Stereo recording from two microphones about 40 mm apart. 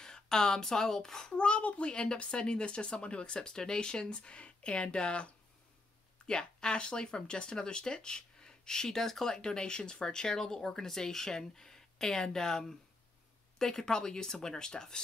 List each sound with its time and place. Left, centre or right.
0.0 s speech: centre
1.4 s speech: left